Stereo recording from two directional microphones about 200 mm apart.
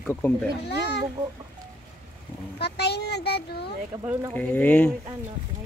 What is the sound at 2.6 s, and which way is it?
A child's voice, 55° left (ahead or behind).